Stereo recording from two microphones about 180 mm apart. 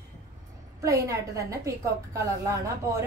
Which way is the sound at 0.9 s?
15° right (ahead or behind).